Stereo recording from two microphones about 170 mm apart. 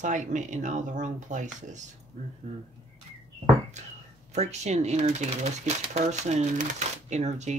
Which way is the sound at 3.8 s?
45° right (ahead or behind).